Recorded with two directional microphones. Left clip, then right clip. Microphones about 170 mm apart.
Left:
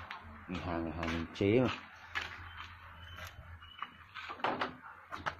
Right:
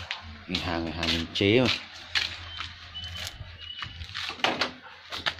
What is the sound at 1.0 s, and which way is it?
Speech, 25° right (ahead or behind).